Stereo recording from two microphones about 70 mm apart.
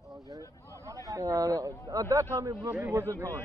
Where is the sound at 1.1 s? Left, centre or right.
Right.